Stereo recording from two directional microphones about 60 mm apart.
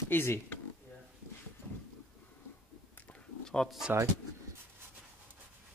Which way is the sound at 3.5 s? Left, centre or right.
Centre.